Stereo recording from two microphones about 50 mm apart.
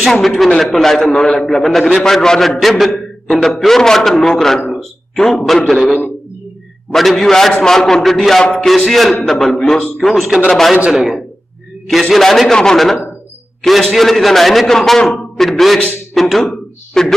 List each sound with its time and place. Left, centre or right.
0.1 s a man's voice: centre
4.7 s a sound: centre
5.7 s a man's voice: centre
10.9 s a man's voice: centre
17.0 s a man's voice: centre